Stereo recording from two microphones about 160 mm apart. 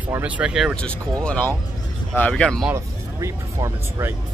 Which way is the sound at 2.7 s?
20° right (ahead or behind).